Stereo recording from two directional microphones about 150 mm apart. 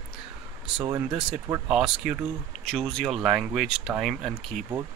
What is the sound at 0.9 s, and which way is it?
Speech, 20° right (ahead or behind).